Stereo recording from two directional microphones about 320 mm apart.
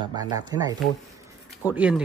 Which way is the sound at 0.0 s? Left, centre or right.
Centre.